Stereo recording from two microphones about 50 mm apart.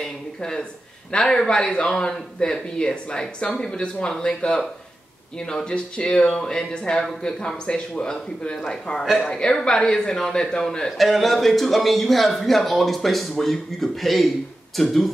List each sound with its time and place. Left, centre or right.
0.0 s a sound: centre
1.1 s speech: centre
11.0 s speech: centre